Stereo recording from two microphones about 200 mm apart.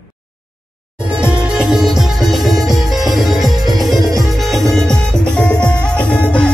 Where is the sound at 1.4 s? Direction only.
5° right (ahead or behind).